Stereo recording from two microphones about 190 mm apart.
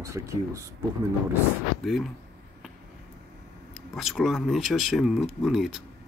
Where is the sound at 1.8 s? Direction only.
Centre (ahead or behind).